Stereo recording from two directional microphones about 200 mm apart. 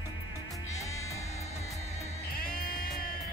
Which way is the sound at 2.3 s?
50° left (ahead or behind).